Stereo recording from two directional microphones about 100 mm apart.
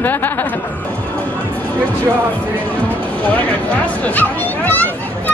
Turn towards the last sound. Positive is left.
turn(degrees=15)  # may be behind; listen again after turning